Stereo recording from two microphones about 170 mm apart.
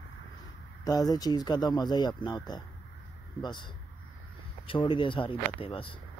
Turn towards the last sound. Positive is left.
turn(degrees=30)  # may be behind; listen again after turning